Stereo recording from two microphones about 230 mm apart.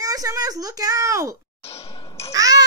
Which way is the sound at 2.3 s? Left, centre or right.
Centre.